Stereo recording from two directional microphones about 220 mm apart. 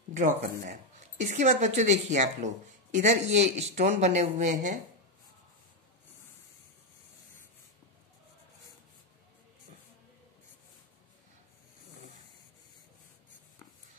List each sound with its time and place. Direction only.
0.1 s speech: 35° right (ahead or behind)